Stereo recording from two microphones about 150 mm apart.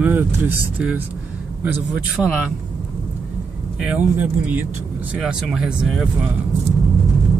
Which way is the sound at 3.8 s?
10° right (ahead or behind).